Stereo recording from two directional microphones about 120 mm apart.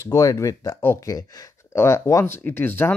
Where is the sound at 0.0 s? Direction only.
25° left (ahead or behind).